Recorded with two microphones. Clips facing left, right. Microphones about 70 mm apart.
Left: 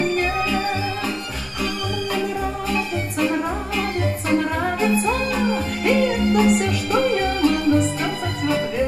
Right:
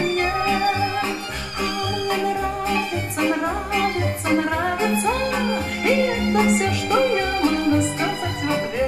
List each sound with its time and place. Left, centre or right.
2.7 s music: right
5.4 s music: right